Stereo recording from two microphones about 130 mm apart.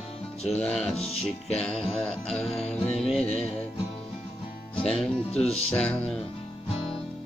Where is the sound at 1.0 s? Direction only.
50° left (ahead or behind).